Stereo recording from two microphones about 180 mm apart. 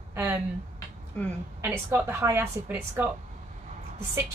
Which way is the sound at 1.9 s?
15° right (ahead or behind).